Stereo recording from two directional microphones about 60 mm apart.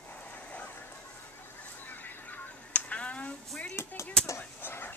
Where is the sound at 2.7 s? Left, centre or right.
Left.